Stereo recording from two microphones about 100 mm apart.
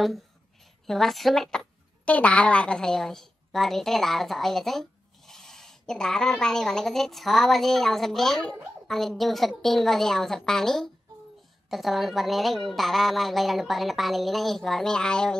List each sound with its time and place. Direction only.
0.8 s a woman's voice: 5° left (ahead or behind)